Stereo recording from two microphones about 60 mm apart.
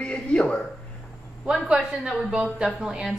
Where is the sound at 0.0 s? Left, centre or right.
Centre.